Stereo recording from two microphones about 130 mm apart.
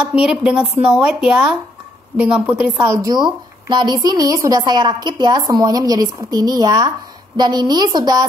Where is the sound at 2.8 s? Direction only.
30° right (ahead or behind).